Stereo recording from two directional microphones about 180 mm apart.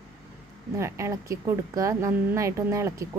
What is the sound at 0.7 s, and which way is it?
A woman's voice, 15° right (ahead or behind).